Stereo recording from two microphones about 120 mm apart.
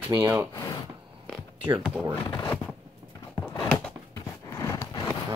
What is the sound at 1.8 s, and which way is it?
Speech, 10° right (ahead or behind).